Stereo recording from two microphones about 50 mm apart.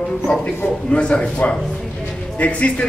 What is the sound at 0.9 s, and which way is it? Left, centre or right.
A man's voice, centre.